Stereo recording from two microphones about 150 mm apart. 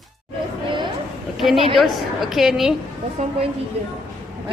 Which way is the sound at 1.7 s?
Centre (ahead or behind).